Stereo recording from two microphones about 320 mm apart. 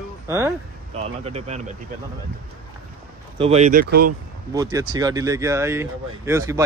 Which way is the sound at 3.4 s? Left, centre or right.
Centre.